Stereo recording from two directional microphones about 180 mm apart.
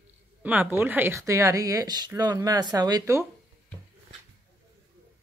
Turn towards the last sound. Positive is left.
turn(degrees=-15)  # may be behind; listen again after turning